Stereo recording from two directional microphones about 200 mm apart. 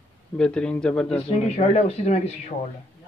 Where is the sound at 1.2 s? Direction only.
35° left (ahead or behind).